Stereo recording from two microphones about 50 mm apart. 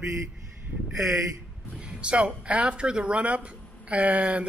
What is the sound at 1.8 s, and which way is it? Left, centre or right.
Speech, centre.